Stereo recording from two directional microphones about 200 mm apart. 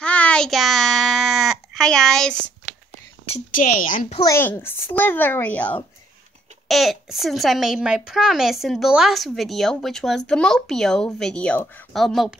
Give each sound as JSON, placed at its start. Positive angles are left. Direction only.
{"t": 0.0, "sound": "a sound", "side_deg": 5}
{"t": 3.3, "sound": "speech", "side_deg": 45}
{"t": 4.2, "sound": "a child's voice", "side_deg": 15}